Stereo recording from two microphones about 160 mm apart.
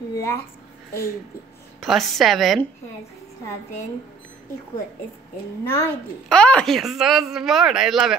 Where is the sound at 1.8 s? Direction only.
Centre (ahead or behind).